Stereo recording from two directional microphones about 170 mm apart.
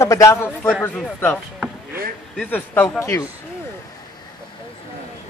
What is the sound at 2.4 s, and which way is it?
Speech, 10° left (ahead or behind).